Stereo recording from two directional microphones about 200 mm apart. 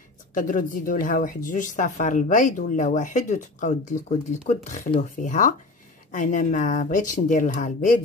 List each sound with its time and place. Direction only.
0.3 s speech: 40° left (ahead or behind)